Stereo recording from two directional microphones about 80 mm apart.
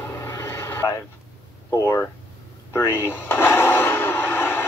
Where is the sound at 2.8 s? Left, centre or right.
Left.